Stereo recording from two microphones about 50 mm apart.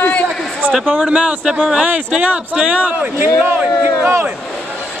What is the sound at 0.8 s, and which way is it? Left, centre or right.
Speech, right.